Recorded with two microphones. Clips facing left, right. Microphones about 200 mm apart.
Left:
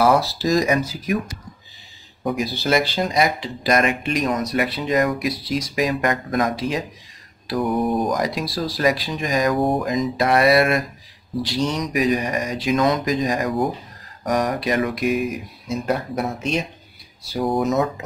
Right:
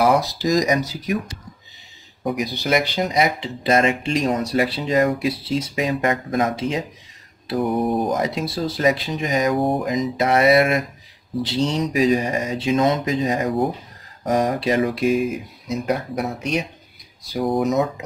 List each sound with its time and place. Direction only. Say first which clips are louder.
0.0 s speech: even; 15° right (ahead or behind)
15.8 s speech: even; 15° right (ahead or behind)